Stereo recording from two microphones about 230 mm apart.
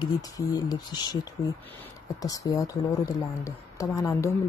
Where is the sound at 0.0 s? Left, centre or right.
Centre.